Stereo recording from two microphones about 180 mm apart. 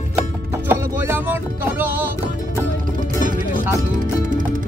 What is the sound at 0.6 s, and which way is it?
Music, 10° right (ahead or behind).